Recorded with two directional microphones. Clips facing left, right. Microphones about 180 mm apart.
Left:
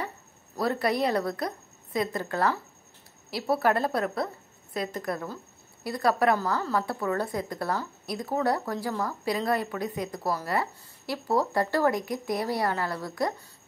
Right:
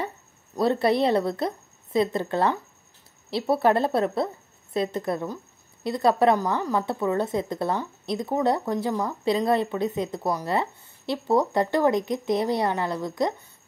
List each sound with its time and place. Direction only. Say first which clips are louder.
0.6 s a woman's voice: right 5 dB; 25° right (ahead or behind)